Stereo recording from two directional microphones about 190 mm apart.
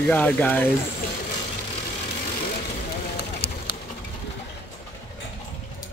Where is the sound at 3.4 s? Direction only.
55° left (ahead or behind).